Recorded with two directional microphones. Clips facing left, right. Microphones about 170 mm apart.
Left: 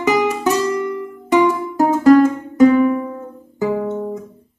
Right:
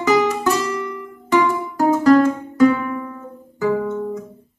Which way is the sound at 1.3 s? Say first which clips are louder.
Left 3 dB; 20° left (ahead or behind).